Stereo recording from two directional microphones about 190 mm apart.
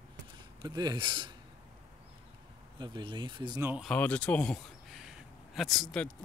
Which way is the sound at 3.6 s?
5° right (ahead or behind).